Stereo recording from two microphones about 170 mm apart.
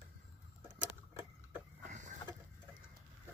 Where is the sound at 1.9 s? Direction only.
45° right (ahead or behind).